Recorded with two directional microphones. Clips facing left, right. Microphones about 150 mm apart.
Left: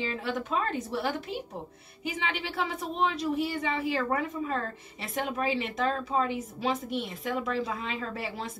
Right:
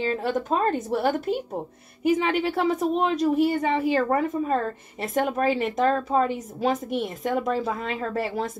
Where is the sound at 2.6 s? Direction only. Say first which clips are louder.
Right 4 dB; 45° right (ahead or behind).